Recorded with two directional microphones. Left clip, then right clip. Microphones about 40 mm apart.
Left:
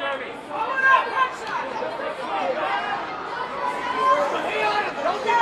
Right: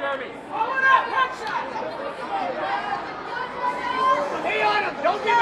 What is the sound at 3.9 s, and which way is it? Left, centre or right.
Chatter, right.